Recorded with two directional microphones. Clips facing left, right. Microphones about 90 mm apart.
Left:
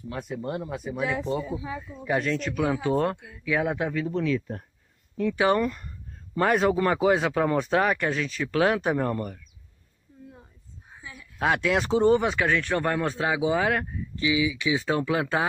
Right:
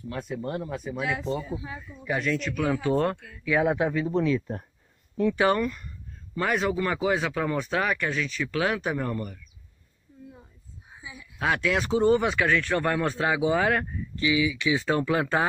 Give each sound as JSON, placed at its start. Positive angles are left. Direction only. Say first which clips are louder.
{"t": 0.4, "sound": "speech", "louder": "even", "side_deg": 15}
{"t": 2.0, "sound": "speech", "louder": "left 1 dB", "side_deg": 35}
{"t": 2.5, "sound": "speech", "louder": "left 1 dB", "side_deg": 20}
{"t": 3.5, "sound": "speech", "louder": "right 3 dB", "side_deg": -15}
{"t": 4.1, "sound": "speech", "louder": "right 2 dB", "side_deg": -30}
{"t": 5.5, "sound": "speech", "louder": "left 2 dB", "side_deg": 25}
{"t": 6.3, "sound": "speech", "louder": "left 4 dB", "side_deg": 40}
{"t": 10.9, "sound": "a sound", "louder": "even", "side_deg": -10}
{"t": 11.3, "sound": "speech", "louder": "left 2 dB", "side_deg": 30}